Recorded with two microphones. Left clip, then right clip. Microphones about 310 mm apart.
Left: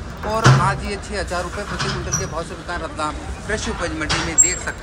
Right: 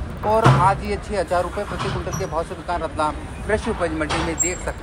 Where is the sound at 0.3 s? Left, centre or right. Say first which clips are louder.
Right 2 dB; centre.